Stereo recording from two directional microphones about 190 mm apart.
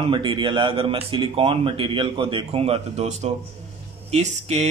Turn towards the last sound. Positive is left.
turn(degrees=-35)  # may be behind; listen again after turning